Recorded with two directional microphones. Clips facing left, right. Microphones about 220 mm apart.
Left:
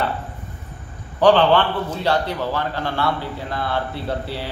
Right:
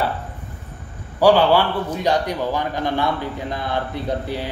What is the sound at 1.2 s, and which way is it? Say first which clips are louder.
A man's voice: even; 10° right (ahead or behind).